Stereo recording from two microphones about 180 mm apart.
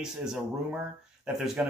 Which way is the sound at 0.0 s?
5° right (ahead or behind).